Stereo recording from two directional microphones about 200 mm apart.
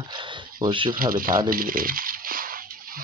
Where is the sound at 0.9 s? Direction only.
45° right (ahead or behind).